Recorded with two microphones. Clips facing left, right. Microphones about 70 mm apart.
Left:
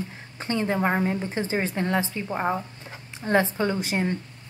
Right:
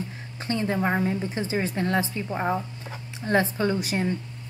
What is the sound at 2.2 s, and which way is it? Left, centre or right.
Speech, centre.